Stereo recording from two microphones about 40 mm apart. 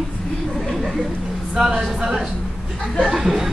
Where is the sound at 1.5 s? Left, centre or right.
Centre.